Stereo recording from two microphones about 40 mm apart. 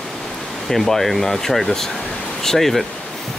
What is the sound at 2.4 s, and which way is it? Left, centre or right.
Speech, centre.